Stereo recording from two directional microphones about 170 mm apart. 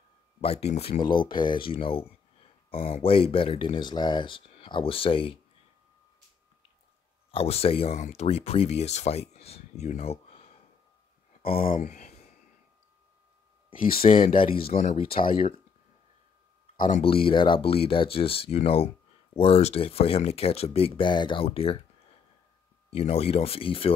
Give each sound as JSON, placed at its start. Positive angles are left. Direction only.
{"t": 0.4, "sound": "speech", "side_deg": 35}
{"t": 1.0, "sound": "speech", "side_deg": 25}
{"t": 7.2, "sound": "speech", "side_deg": 35}
{"t": 11.6, "sound": "speech", "side_deg": 45}
{"t": 13.9, "sound": "speech", "side_deg": 55}
{"t": 14.2, "sound": "speech", "side_deg": 30}
{"t": 17.0, "sound": "speech", "side_deg": 30}
{"t": 22.8, "sound": "speech", "side_deg": 35}